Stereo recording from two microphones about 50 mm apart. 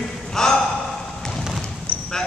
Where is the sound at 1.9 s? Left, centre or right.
Left.